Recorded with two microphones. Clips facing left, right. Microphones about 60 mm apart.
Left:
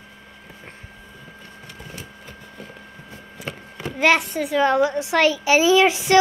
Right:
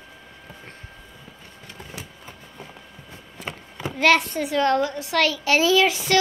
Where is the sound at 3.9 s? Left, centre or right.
Centre.